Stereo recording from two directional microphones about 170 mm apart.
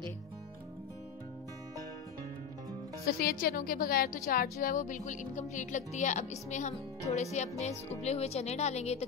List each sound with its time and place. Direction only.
3.1 s a woman's voice: 65° left (ahead or behind); by 9.0 s 40° left (ahead or behind)